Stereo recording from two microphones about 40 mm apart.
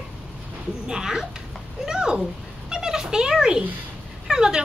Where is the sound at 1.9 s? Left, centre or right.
Centre.